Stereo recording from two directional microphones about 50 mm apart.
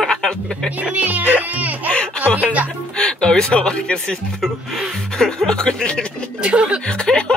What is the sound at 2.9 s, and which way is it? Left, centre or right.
Speech, centre.